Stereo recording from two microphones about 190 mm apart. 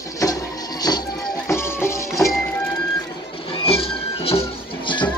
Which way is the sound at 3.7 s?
30° left (ahead or behind).